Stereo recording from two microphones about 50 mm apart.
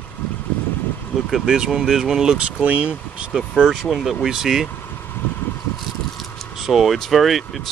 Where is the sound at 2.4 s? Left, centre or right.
Right.